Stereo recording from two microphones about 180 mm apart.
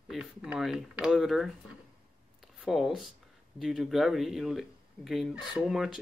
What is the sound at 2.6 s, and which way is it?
Speech, centre (ahead or behind).